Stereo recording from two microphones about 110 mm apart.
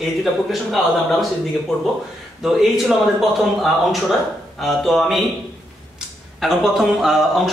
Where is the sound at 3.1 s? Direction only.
Centre (ahead or behind).